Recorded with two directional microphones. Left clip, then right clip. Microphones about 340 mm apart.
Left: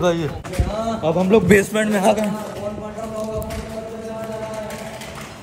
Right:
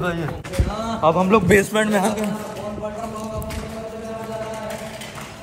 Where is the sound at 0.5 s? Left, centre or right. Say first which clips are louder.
Left 2 dB; centre.